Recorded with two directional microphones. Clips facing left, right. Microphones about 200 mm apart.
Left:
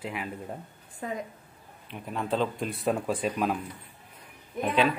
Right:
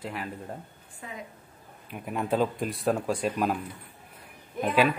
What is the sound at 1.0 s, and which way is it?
Speech, 40° left (ahead or behind).